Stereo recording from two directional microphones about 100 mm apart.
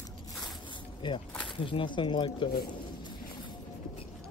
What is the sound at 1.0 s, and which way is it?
Speech, 50° left (ahead or behind).